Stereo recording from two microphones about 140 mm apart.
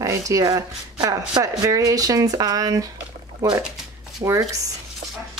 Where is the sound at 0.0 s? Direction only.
25° right (ahead or behind).